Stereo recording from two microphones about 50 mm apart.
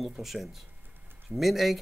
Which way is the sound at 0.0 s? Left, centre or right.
Centre.